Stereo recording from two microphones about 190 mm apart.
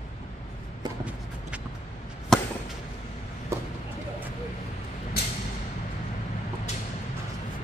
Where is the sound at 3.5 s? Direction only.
15° right (ahead or behind).